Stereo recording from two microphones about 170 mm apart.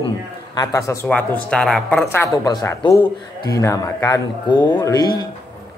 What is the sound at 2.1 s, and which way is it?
Speech, 20° left (ahead or behind).